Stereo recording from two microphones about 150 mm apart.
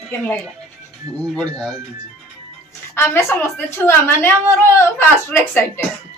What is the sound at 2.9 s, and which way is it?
A woman's voice, 15° left (ahead or behind).